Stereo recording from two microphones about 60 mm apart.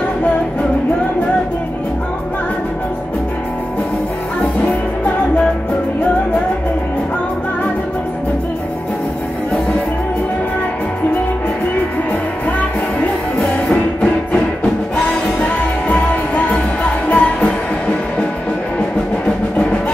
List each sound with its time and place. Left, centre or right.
17.1 s music: centre